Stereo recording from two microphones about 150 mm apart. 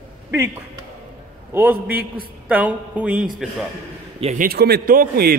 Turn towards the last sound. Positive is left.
turn(degrees=-80)